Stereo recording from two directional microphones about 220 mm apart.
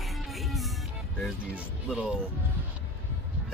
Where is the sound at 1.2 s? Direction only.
5° right (ahead or behind).